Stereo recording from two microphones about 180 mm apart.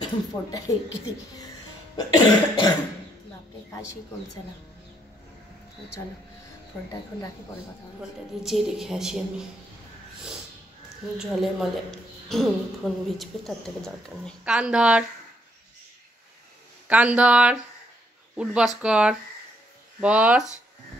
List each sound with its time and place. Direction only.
0.0 s cough: 20° left (ahead or behind)
2.0 s cough: 20° left (ahead or behind)
8.0 s a woman's voice: centre (ahead or behind)
11.1 s a woman's voice: centre (ahead or behind)
16.8 s a woman's voice: 10° right (ahead or behind)